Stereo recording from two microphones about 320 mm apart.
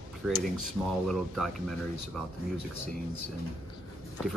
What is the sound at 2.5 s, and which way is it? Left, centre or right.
Speech, right.